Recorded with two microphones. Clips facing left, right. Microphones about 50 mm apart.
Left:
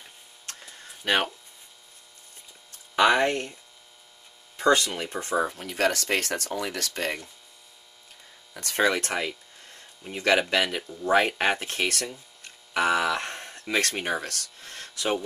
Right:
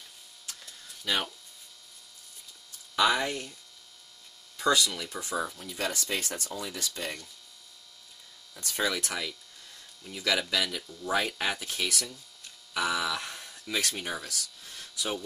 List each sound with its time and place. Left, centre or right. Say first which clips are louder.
0.5 s a sound: left 4 dB; left
1.0 s speech: left 6 dB; left
3.0 s speech: left 5 dB; left
4.6 s speech: left 4 dB; left
8.5 s speech: left 7 dB; left